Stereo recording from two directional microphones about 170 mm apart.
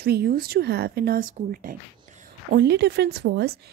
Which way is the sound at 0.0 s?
65° right (ahead or behind).